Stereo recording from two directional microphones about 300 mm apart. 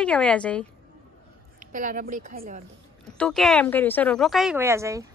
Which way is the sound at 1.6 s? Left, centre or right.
Right.